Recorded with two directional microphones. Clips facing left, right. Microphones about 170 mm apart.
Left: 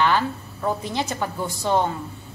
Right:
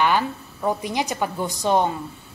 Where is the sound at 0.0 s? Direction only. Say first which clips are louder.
Even; 15° right (ahead or behind).